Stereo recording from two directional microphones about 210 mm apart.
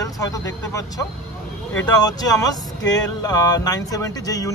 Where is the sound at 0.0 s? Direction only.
15° left (ahead or behind).